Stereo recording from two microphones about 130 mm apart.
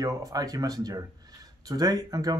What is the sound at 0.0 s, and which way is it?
Speech, 25° right (ahead or behind).